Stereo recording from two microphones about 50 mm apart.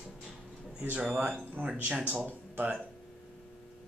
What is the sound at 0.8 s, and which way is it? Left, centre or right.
Speech, right.